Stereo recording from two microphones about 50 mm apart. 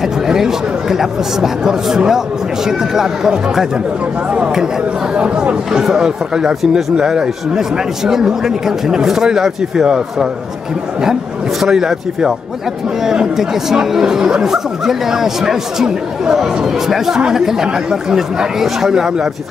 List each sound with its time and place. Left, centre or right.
0.0 s speech: centre
11.6 s speech: centre